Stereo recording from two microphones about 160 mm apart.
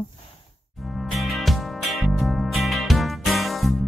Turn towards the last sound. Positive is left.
turn(degrees=0)  # may be behind; listen again after turning